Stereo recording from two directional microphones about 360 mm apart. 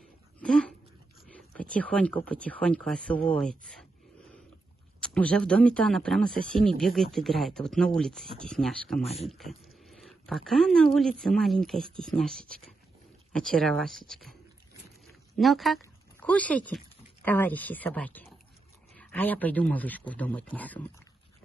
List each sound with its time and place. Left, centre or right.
0.4 s a sound: centre
1.2 s speech: centre
5.0 s speech: centre
9.0 s speech: centre
9.3 s speech: centre
13.3 s speech: centre